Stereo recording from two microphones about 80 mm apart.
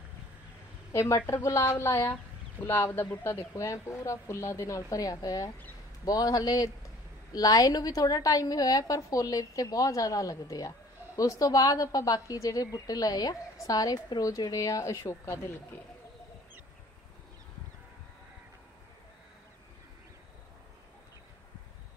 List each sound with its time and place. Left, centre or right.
0.9 s a woman's voice: left